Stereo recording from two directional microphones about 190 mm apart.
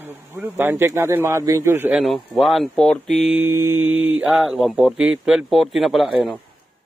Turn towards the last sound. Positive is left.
turn(degrees=0)  # may be behind; listen again after turning